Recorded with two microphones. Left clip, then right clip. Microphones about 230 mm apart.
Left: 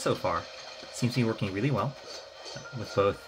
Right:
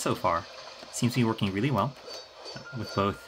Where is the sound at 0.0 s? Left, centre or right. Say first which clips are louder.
Right 1 dB; right.